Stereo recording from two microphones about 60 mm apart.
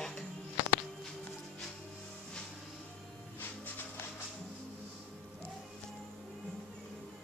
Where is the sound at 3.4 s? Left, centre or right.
Left.